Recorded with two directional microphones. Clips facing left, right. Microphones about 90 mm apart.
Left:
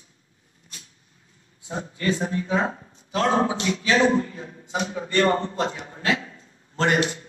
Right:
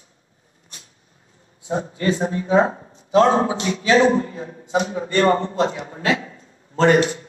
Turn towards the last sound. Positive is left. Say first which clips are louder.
# right 6 dB
turn(degrees=-30)  # may be behind; listen again after turning